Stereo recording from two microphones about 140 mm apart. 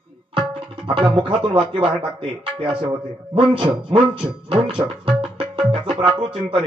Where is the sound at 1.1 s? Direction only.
40° right (ahead or behind).